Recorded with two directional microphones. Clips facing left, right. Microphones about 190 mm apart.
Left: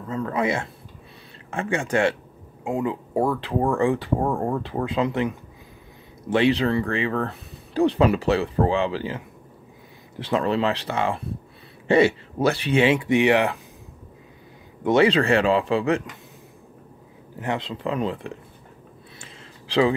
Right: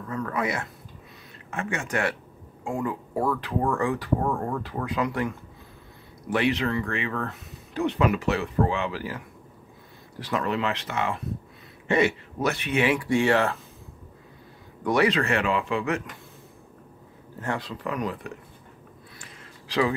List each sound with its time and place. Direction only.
0.0 s speech: 25° left (ahead or behind)
14.8 s speech: 25° left (ahead or behind)
17.4 s speech: 20° left (ahead or behind)
19.1 s a sound: 25° left (ahead or behind)